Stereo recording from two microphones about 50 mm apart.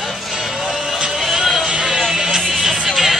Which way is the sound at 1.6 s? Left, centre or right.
Centre.